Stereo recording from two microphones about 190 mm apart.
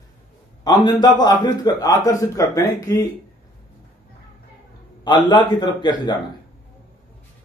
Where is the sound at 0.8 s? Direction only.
20° left (ahead or behind).